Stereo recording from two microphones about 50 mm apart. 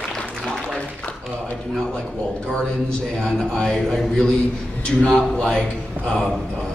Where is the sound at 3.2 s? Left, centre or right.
Centre.